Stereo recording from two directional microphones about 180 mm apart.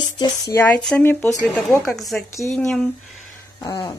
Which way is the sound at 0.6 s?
5° left (ahead or behind).